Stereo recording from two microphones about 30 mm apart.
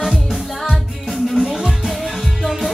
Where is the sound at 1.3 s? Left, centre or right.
Right.